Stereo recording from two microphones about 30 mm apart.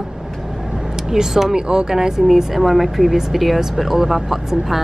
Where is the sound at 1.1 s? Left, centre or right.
Centre.